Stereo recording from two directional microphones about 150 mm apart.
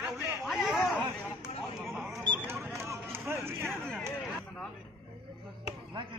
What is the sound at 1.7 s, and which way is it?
Single-lens reflex camera, 5° right (ahead or behind).